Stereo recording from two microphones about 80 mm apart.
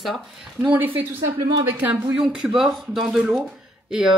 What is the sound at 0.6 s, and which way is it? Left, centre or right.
Speech, right.